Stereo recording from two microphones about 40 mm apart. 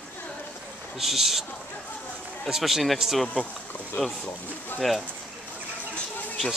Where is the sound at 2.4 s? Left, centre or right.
Centre.